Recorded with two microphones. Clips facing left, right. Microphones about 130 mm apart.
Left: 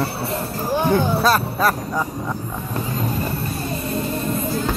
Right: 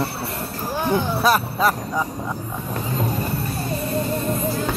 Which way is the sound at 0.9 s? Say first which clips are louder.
Right 2 dB; 20° right (ahead or behind).